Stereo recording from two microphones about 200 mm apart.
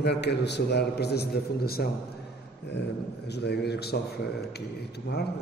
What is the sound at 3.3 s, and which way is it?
Speech, 55° left (ahead or behind).